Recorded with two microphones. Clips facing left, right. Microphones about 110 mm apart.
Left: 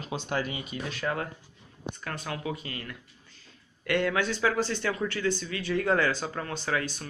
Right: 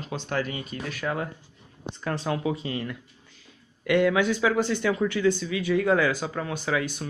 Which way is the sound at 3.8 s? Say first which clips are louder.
Right 5 dB; 10° right (ahead or behind).